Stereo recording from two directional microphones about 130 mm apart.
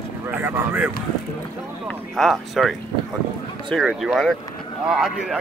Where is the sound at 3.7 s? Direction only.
Centre (ahead or behind).